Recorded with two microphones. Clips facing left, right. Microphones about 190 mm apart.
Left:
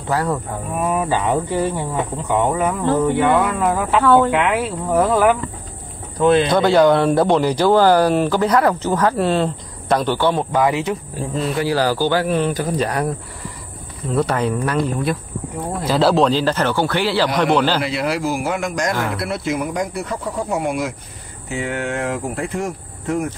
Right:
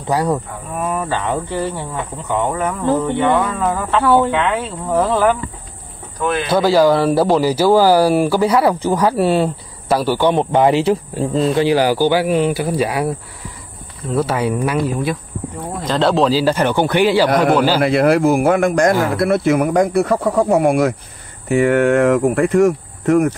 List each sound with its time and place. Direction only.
0.1 s speech: 15° right (ahead or behind)
0.7 s speech: 10° left (ahead or behind)
4.0 s speech: 10° right (ahead or behind)
4.3 s speech: 10° left (ahead or behind)
6.1 s speech: 30° left (ahead or behind)
6.5 s speech: centre (ahead or behind)
17.7 s speech: 55° right (ahead or behind)